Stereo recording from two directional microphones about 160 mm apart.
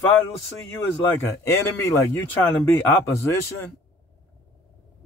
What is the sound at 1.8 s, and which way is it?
A man's voice, 15° left (ahead or behind).